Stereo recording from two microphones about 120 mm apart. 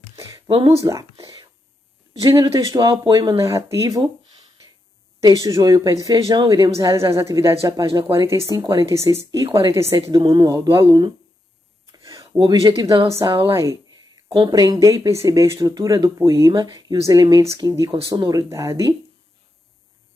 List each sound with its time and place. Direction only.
0.1 s a sound: 25° right (ahead or behind)
0.7 s speech: 25° right (ahead or behind)
1.2 s whispering: 35° right (ahead or behind)
2.2 s speech: 30° right (ahead or behind)
5.2 s speech: 30° right (ahead or behind)
11.8 s a sound: 30° right (ahead or behind)
12.3 s speech: 40° right (ahead or behind)
13.5 s a sound: 25° right (ahead or behind)
14.5 s speech: 35° right (ahead or behind)